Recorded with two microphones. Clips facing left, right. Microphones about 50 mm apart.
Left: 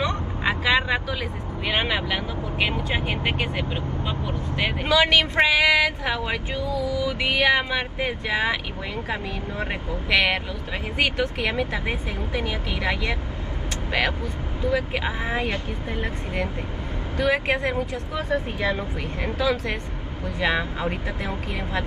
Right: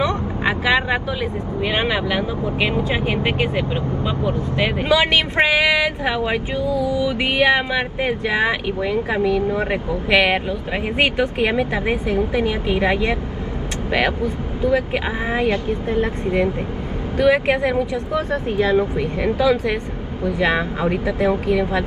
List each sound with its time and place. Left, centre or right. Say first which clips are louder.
0.0 s vehicle: right 5 dB; centre
1.7 s speech: right 3 dB; centre
2.9 s music: right 5 dB; right
4.8 s music: right 1 dB; right
6.6 s music: right 5 dB; right
9.2 s speech: right 13 dB; right
9.6 s music: right 7 dB; right
12.2 s speech: right 8 dB; right
14.2 s music: right 7 dB; right
17.2 s speech: right 6 dB; right